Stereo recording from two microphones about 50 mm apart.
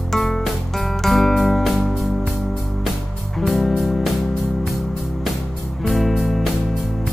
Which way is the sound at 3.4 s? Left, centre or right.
Centre.